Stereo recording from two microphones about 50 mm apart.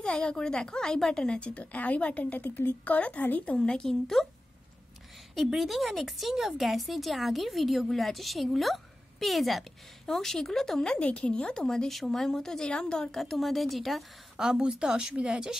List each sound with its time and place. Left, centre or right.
0.0 s speech: centre
1.3 s a woman's voice: left
3.5 s speech: centre
5.5 s speech: centre
14.3 s a woman's voice: centre